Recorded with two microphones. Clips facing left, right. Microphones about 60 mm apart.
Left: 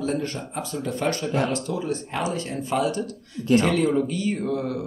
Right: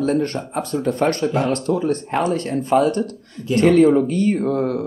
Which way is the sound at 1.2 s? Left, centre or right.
Centre.